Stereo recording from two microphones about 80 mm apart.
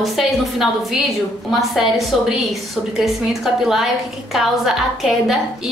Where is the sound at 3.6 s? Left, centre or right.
Centre.